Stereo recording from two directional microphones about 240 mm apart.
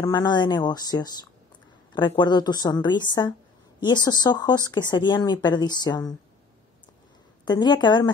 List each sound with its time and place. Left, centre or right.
0.0 s speech: centre
7.4 s speech: centre